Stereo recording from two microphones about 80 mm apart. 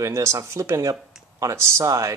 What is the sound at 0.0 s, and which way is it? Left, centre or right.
Speech, right.